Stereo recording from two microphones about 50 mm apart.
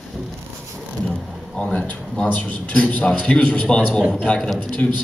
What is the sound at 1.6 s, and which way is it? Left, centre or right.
Speech, centre.